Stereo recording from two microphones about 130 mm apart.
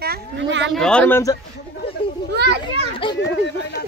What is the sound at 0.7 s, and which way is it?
Speech, 5° left (ahead or behind).